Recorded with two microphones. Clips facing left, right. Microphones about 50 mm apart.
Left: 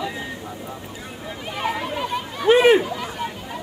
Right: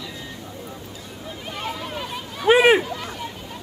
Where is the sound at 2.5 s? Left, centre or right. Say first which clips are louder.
Left 1 dB; centre.